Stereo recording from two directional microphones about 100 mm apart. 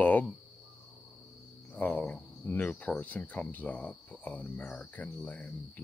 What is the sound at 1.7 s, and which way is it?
Speech, 15° left (ahead or behind).